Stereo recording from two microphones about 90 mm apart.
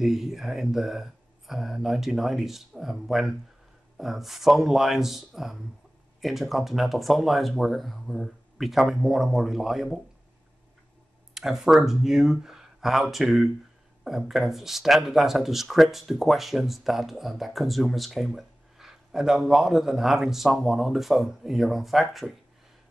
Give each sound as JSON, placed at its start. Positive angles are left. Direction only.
{"t": 0.0, "sound": "speech", "side_deg": -5}
{"t": 11.3, "sound": "speech", "side_deg": -5}